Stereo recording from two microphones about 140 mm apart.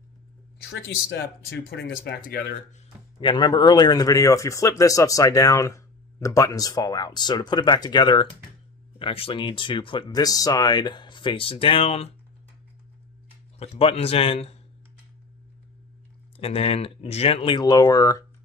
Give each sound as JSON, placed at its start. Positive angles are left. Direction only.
{"t": 2.2, "sound": "speech", "side_deg": 90}
{"t": 3.2, "sound": "speech", "side_deg": 35}
{"t": 13.6, "sound": "a man's voice", "side_deg": 45}
{"t": 16.3, "sound": "speech", "side_deg": 45}